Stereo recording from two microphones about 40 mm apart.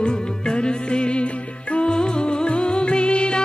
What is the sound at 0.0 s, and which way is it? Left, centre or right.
Music, left.